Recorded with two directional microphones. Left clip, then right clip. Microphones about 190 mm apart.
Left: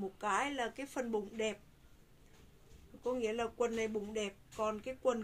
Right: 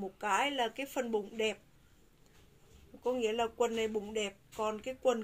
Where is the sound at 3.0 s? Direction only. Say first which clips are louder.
Right 4 dB; 15° left (ahead or behind).